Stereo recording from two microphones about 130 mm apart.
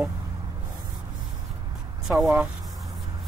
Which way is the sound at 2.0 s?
5° right (ahead or behind).